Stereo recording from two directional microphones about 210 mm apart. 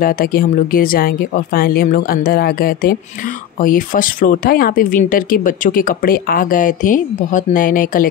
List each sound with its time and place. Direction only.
0.0 s speech: 45° left (ahead or behind)